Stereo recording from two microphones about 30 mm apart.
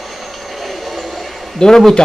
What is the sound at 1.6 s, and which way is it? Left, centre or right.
Speech, left.